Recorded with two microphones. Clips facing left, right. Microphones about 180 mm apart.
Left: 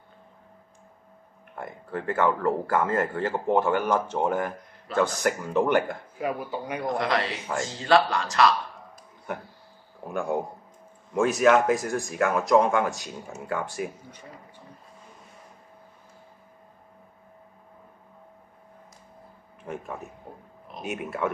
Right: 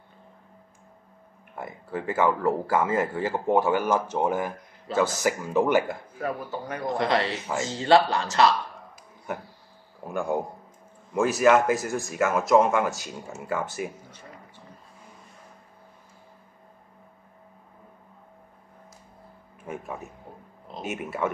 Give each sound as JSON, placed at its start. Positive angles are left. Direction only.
{"t": 1.5, "sound": "speech", "side_deg": -10}
{"t": 6.1, "sound": "speech", "side_deg": 15}
{"t": 7.0, "sound": "speech", "side_deg": -25}
{"t": 10.0, "sound": "speech", "side_deg": 0}
{"t": 19.6, "sound": "speech", "side_deg": -5}